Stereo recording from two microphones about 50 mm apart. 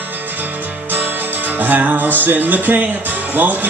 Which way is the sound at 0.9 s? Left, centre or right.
Right.